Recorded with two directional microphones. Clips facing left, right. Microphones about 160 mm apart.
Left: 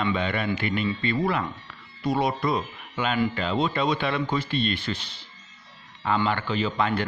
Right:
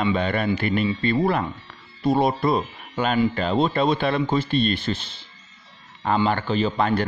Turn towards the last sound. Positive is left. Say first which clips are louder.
# right 4 dB
turn(degrees=-35)  # may be behind; listen again after turning